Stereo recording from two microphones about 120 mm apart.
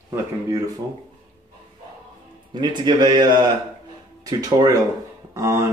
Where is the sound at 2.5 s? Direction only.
40° right (ahead or behind).